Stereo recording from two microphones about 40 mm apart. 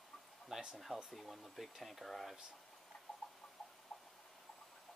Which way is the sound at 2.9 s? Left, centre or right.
Centre.